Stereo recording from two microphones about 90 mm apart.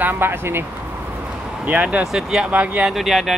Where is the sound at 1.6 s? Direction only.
15° right (ahead or behind).